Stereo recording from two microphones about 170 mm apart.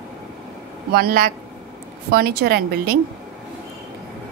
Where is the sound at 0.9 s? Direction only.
60° right (ahead or behind).